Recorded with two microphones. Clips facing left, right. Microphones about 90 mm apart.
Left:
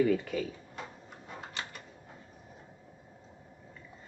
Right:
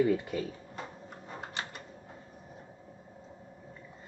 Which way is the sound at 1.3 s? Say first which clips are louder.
Right 2 dB; 30° right (ahead or behind).